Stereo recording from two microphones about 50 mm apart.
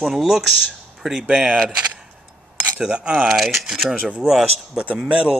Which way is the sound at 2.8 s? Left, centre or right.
Centre.